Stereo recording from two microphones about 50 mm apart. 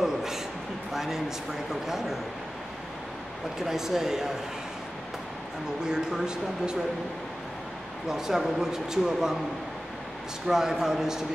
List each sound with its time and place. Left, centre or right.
0.0 s a sound: centre
0.9 s a man's voice: centre
3.5 s a man's voice: centre
5.9 s a man's voice: centre
8.1 s a man's voice: centre
10.5 s a man's voice: centre